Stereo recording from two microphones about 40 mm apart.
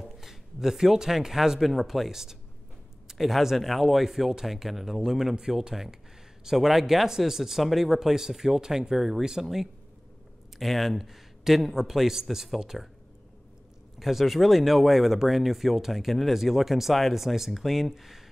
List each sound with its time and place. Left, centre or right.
0.0 s speech: centre
8.9 s speech: centre
13.9 s speech: centre